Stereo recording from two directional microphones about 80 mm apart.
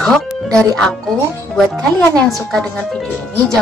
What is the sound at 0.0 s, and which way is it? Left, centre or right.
Speech, centre.